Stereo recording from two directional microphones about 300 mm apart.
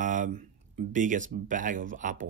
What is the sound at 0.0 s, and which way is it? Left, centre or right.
Speech, right.